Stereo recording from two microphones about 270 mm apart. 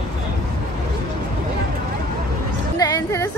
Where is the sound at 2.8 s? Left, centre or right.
Centre.